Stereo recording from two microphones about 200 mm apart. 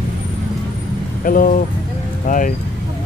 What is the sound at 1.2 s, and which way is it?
Speech, 45° left (ahead or behind).